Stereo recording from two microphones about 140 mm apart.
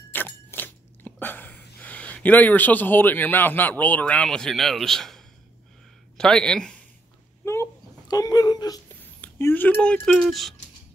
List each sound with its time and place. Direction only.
0.1 s crunch: 15° left (ahead or behind)
6.1 s speech: 5° left (ahead or behind)
7.4 s whimper: 20° left (ahead or behind)
9.2 s speech: 15° left (ahead or behind)